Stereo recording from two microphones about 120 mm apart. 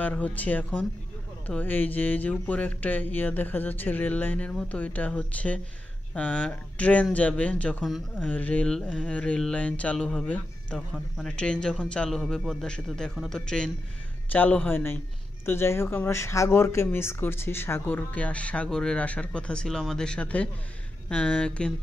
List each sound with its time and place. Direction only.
0.0 s speech: 15° left (ahead or behind)
7.8 s speech: centre (ahead or behind)
8.3 s speech: 15° left (ahead or behind)